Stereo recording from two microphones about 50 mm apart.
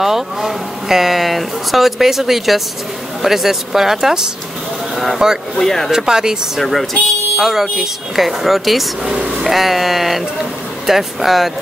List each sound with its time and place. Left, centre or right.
0.0 s speech: centre
4.9 s vehicle: centre
5.6 s speech: centre
5.9 s speech: centre
6.6 s speech: centre
9.0 s speech: centre